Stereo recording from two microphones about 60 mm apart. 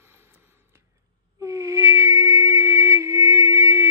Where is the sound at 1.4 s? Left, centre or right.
Right.